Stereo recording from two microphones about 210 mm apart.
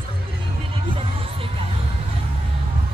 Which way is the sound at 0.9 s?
25° right (ahead or behind).